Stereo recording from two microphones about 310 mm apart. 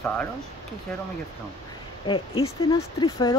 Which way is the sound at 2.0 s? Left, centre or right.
Centre.